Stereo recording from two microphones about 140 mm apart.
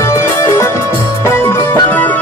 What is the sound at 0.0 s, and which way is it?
Music, 20° left (ahead or behind).